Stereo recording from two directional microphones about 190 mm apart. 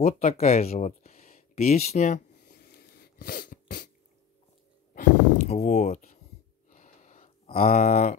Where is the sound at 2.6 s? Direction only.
55° left (ahead or behind).